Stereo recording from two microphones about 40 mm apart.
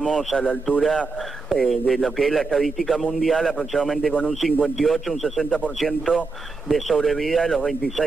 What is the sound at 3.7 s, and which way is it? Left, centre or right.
Speech, left.